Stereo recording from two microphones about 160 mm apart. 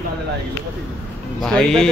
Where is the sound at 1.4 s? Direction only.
5° left (ahead or behind).